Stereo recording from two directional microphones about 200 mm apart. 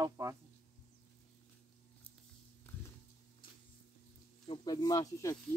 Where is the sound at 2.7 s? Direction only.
10° left (ahead or behind).